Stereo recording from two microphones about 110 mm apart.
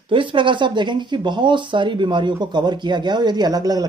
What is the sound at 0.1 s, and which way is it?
Speech, 50° right (ahead or behind).